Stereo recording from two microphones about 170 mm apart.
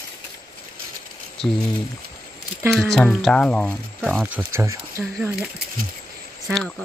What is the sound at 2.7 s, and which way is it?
Speech, centre (ahead or behind).